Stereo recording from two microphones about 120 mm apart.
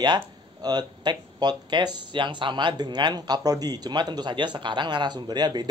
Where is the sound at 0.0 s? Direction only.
35° right (ahead or behind).